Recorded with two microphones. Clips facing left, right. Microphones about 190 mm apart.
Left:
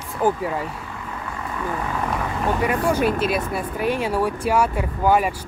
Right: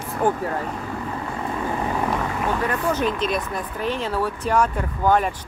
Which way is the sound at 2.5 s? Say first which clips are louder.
Left 4 dB; 10° left (ahead or behind).